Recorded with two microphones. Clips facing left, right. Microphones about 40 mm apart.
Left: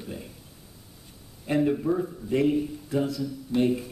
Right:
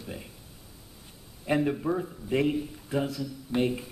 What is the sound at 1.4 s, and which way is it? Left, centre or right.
A man's voice, centre.